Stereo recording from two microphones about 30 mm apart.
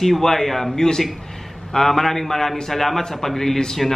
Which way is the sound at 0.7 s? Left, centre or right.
Centre.